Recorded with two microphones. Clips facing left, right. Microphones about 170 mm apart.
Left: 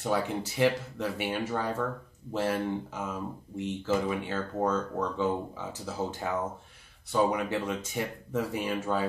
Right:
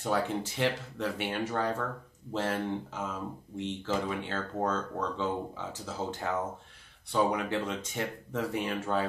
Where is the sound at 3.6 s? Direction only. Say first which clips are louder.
Left 3 dB; 10° left (ahead or behind).